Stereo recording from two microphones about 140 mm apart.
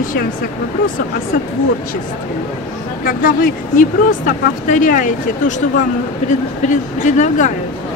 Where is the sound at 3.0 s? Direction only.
85° left.